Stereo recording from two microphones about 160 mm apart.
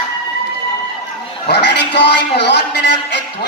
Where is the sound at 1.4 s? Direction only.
90° left.